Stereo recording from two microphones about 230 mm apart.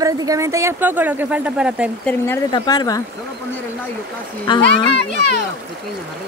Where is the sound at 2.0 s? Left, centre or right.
Centre.